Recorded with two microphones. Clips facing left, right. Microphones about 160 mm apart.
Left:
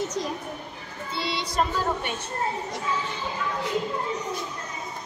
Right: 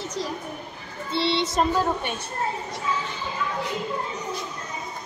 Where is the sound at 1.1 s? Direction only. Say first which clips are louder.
Right 7 dB; 30° right (ahead or behind).